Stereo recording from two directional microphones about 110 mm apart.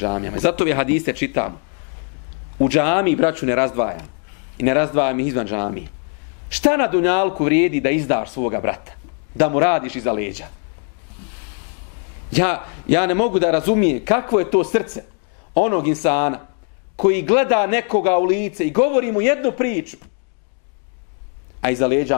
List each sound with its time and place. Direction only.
0.0 s a man's voice: 15° left (ahead or behind)
2.6 s a man's voice: 10° left (ahead or behind)
12.4 s a man's voice: 15° left (ahead or behind)
21.5 s a man's voice: 15° left (ahead or behind)